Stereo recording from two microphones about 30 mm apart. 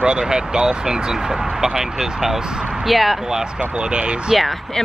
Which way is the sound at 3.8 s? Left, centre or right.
Right.